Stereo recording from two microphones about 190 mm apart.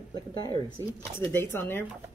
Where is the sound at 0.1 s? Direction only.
20° left (ahead or behind).